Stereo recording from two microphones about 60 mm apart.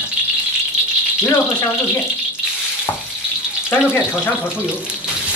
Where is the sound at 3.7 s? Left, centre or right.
Left.